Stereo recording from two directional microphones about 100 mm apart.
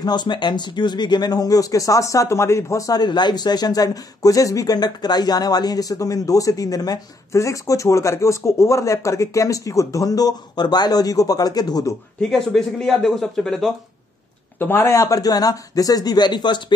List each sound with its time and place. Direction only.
0.0 s speech: 45° left (ahead or behind)
12.2 s speech: 5° left (ahead or behind)
14.6 s speech: 25° left (ahead or behind); by 16.7 s 50° left (ahead or behind)